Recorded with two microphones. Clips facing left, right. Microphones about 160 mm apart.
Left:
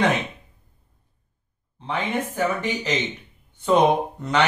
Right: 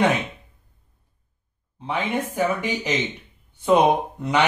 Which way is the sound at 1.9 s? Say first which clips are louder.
Right 1 dB; 10° right (ahead or behind).